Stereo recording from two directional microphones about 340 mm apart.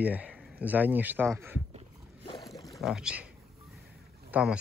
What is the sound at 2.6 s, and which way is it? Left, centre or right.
Rowboat, centre.